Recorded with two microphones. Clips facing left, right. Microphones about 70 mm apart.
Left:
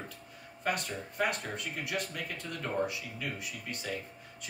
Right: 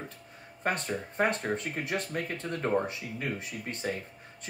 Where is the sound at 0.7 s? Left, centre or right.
Right.